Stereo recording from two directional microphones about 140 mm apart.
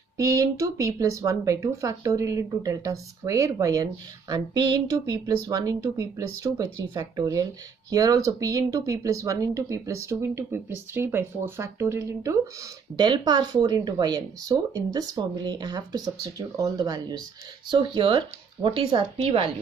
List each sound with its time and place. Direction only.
0.2 s speech: 25° right (ahead or behind); by 19.5 s 45° right (ahead or behind)